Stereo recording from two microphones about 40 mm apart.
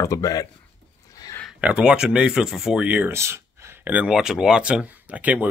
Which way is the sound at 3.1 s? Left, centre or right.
Right.